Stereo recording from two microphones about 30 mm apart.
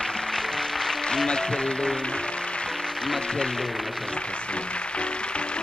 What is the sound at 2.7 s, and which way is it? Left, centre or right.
Speech, centre.